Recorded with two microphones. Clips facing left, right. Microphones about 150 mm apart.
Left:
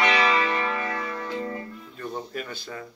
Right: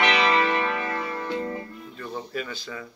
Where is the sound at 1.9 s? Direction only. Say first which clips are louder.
Even; 45° left (ahead or behind).